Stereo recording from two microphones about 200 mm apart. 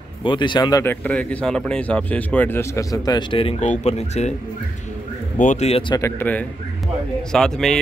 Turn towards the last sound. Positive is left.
turn(degrees=0)  # may be behind; listen again after turning